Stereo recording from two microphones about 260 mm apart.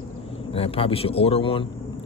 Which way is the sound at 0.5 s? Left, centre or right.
Left.